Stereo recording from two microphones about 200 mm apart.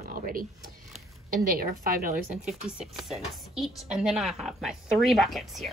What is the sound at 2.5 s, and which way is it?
A woman's voice, centre (ahead or behind).